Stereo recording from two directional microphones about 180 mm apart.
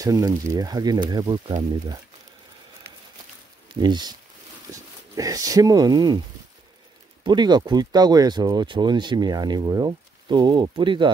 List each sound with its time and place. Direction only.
0.0 s speech: 20° right (ahead or behind)
3.8 s speech: 25° right (ahead or behind)
7.2 s speech: 25° right (ahead or behind)